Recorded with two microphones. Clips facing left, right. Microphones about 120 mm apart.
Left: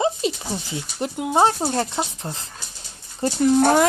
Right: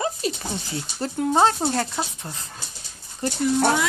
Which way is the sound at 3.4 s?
50° left (ahead or behind).